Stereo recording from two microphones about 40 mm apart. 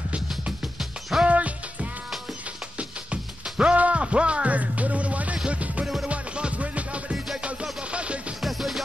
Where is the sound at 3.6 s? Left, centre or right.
Right.